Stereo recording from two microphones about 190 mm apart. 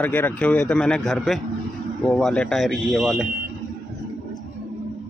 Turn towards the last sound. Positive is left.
turn(degrees=0)  # may be behind; listen again after turning